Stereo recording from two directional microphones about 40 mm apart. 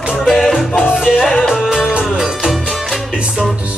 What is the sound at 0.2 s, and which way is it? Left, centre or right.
Music, centre.